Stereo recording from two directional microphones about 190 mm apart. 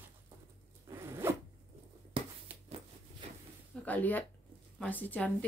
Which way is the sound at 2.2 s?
30° right (ahead or behind).